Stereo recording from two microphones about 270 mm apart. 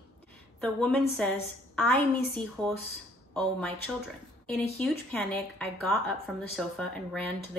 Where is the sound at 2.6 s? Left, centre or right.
Centre.